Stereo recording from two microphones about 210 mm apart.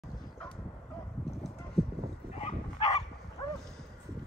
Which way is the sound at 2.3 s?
30° left (ahead or behind).